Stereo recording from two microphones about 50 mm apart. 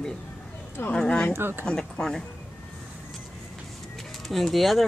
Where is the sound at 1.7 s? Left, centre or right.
Centre.